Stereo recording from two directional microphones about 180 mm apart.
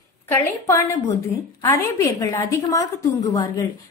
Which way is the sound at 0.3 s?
15° left (ahead or behind).